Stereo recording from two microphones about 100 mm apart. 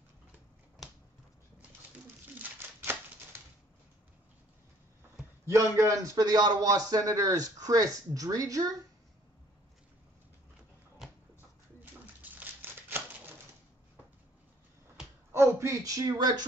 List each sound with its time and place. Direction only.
2.3 s crumpling: 20° right (ahead or behind)
5.4 s a man's voice: 25° right (ahead or behind)
11.0 s a sound: 5° right (ahead or behind)
11.8 s bird: 15° right (ahead or behind)
15.6 s a man's voice: 35° right (ahead or behind)